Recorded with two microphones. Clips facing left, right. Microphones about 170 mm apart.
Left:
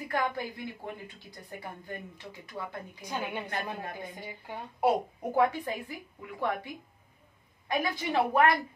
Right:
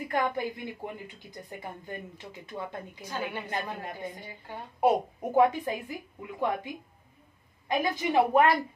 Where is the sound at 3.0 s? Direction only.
15° left (ahead or behind).